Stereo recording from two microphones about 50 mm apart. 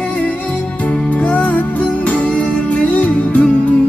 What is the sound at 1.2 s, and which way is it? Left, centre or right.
Music, left.